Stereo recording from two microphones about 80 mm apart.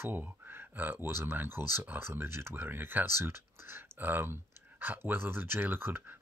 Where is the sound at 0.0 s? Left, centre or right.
Right.